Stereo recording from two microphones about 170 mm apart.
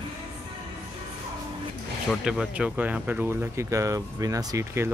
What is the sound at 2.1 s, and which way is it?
Speech, 5° right (ahead or behind).